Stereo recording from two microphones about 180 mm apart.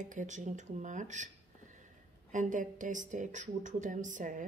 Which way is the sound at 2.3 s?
45° right (ahead or behind).